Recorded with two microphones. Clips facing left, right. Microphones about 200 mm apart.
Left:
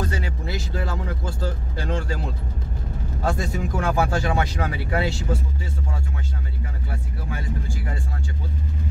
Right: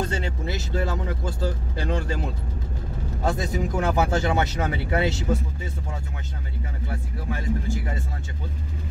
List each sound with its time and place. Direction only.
0.0 s vehicle: 25° right (ahead or behind)
3.3 s speech: 20° right (ahead or behind)